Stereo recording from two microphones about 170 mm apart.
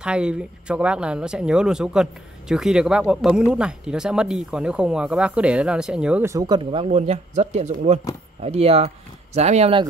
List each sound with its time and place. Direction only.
0.0 s speech: 5° right (ahead or behind)
6.2 s speech: 20° right (ahead or behind)